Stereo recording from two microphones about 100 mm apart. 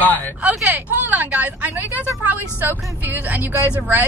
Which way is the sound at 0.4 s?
15° right (ahead or behind).